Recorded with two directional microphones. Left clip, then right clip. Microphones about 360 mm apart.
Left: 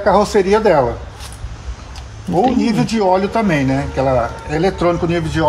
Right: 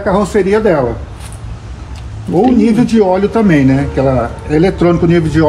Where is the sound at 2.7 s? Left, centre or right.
Centre.